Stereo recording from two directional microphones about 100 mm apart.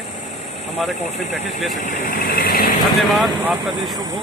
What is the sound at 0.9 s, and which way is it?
Speech, 90° left.